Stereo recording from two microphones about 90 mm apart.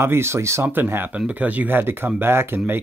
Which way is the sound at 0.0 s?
30° right (ahead or behind).